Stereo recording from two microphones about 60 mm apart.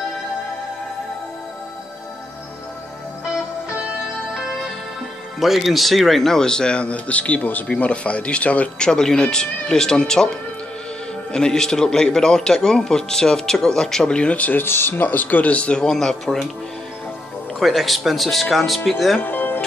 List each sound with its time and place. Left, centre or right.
4.3 s music: centre
5.4 s a man's voice: centre
11.3 s a man's voice: centre
14.6 s speech: left; by 16.4 s centre
17.6 s speech: centre
19.1 s music: left